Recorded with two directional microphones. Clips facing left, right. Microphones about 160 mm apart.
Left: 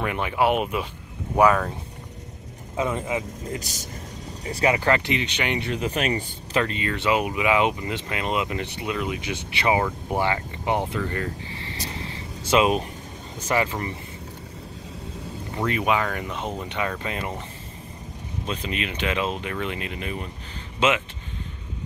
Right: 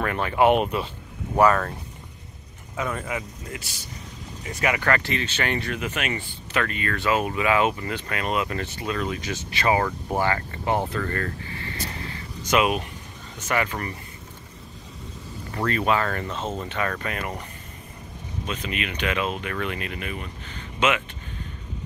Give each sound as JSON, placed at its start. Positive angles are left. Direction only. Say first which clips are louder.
{"t": 0.0, "sound": "speech", "louder": "right 1 dB", "side_deg": 15}
{"t": 0.4, "sound": "speech", "louder": "right 3 dB", "side_deg": 5}
{"t": 2.7, "sound": "speech", "louder": "left 3 dB", "side_deg": 20}
{"t": 3.5, "sound": "speech", "louder": "left 5 dB", "side_deg": 40}
{"t": 4.5, "sound": "speech", "louder": "left 3 dB", "side_deg": 30}
{"t": 15.5, "sound": "speech", "louder": "even", "side_deg": 15}
{"t": 18.4, "sound": "speech", "louder": "left 1 dB", "side_deg": 30}